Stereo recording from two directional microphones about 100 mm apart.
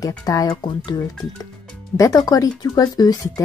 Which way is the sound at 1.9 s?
35° left (ahead or behind).